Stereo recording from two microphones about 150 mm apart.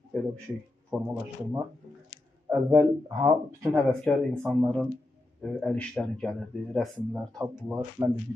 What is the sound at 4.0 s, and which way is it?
Speech, 5° left (ahead or behind).